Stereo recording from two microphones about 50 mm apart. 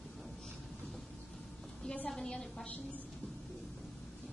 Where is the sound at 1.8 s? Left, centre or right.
Left.